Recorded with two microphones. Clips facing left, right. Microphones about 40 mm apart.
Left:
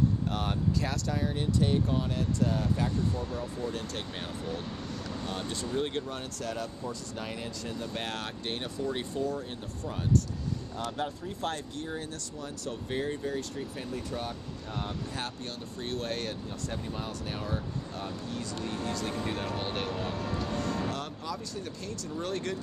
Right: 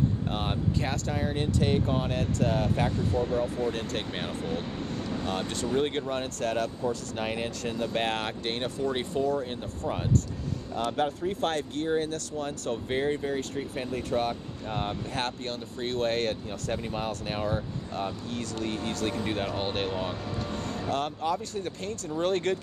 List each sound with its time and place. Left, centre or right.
0.3 s speech: right
5.1 s a sound: right
5.7 s speech: right
10.8 s speech: right
12.9 s speech: right
15.8 s speech: right
16.7 s speech: right
18.6 s speech: right
19.2 s speech: right
20.5 s speech: right